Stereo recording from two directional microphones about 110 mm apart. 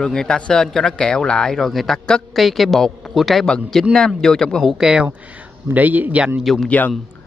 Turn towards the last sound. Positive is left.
turn(degrees=15)  # may be behind; listen again after turning